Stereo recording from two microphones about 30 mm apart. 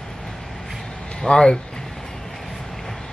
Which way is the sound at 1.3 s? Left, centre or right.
Left.